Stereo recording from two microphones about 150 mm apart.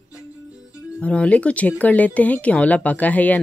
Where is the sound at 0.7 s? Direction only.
15° left (ahead or behind).